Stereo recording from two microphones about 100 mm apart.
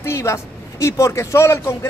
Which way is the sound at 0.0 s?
25° left (ahead or behind).